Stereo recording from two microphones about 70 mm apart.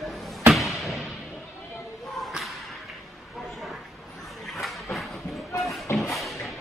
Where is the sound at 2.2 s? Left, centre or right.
Centre.